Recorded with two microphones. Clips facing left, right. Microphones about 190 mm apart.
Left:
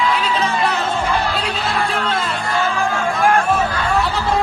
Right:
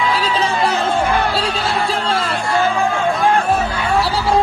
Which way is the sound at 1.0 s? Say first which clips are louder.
Right 2 dB; 55° right (ahead or behind).